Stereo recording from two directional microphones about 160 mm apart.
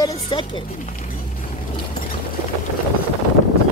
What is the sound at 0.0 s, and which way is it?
Speech, 25° left (ahead or behind).